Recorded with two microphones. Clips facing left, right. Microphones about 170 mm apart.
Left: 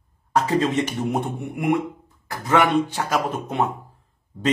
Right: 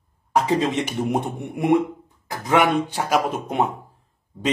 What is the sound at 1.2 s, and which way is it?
Speech, 25° right (ahead or behind).